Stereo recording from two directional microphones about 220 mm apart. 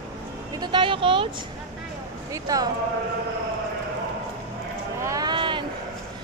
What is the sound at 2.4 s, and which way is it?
Speech, 15° right (ahead or behind).